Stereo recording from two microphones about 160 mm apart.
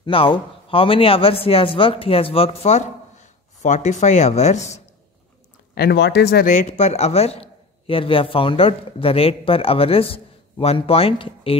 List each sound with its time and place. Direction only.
0.0 s a man's voice: 35° left (ahead or behind)
5.8 s speech: 85° left
6.5 s a man's voice: 45° left (ahead or behind)